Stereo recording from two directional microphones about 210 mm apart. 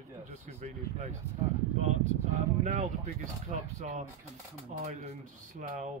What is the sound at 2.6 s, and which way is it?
Speech, 35° right (ahead or behind).